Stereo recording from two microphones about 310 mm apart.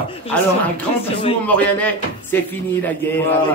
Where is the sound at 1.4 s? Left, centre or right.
Centre.